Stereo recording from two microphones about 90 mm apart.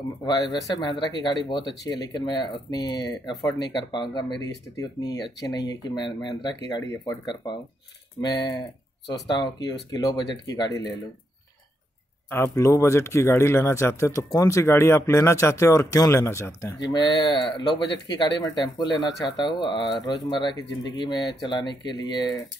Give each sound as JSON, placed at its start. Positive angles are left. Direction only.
{"t": 0.2, "sound": "speech", "side_deg": 50}
{"t": 8.2, "sound": "speech", "side_deg": 50}
{"t": 12.5, "sound": "speech", "side_deg": 35}
{"t": 16.9, "sound": "speech", "side_deg": 55}